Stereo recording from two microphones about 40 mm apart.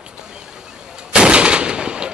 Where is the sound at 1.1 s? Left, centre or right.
Right.